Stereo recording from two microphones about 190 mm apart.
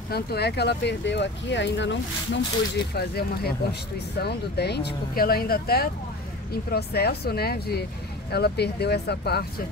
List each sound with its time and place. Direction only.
0.1 s speech: 55° left (ahead or behind)
2.9 s speech: 55° left (ahead or behind)